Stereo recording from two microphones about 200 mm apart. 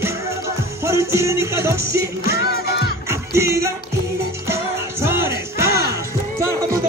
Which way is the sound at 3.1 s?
15° right (ahead or behind).